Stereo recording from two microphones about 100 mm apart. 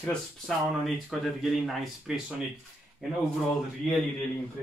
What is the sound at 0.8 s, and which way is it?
Speech, centre (ahead or behind).